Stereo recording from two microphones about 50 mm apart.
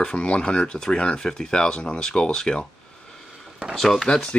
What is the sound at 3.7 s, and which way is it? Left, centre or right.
Speech, centre.